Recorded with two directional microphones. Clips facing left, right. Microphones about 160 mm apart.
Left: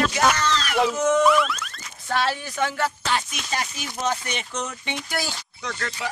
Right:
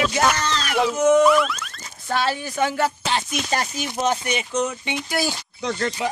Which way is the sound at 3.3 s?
40° right (ahead or behind).